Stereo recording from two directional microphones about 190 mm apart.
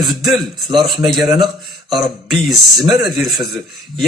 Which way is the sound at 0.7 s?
Centre (ahead or behind).